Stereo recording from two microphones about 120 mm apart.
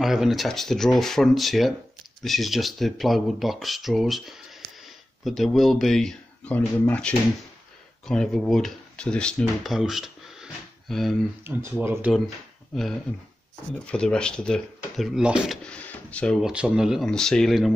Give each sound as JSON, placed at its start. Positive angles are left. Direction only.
{"t": 0.0, "sound": "speech", "side_deg": -5}
{"t": 11.8, "sound": "speech", "side_deg": -20}
{"t": 13.8, "sound": "speech", "side_deg": 5}
{"t": 15.6, "sound": "drawer open or close", "side_deg": 10}
{"t": 16.3, "sound": "speech", "side_deg": -5}